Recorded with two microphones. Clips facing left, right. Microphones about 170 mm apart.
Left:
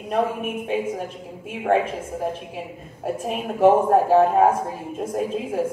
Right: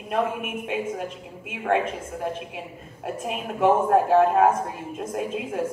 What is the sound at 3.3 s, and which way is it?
A woman's voice, 35° left (ahead or behind).